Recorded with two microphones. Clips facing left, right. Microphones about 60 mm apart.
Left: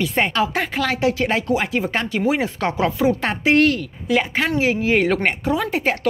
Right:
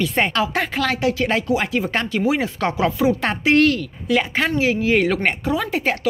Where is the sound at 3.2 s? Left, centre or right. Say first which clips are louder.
Even; centre.